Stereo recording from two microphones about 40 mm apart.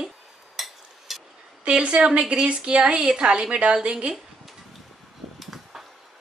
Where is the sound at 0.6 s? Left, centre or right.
Centre.